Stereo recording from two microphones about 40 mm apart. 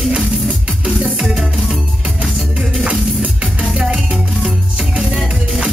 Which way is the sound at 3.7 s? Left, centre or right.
Centre.